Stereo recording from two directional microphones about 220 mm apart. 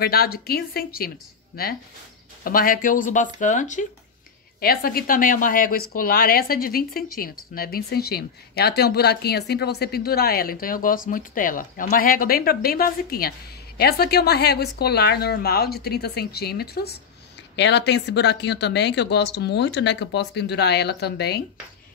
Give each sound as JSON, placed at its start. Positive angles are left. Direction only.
{"t": 0.0, "sound": "a woman's voice", "side_deg": 45}